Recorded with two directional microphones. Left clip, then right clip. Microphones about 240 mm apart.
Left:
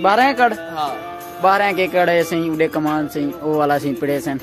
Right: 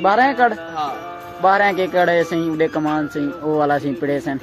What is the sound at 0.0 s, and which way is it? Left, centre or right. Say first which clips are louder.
Speech: left 1 dB; centre.